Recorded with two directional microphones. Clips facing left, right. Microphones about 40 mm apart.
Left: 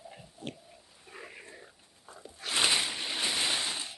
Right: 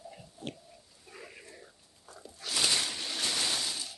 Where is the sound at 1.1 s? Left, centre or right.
Left.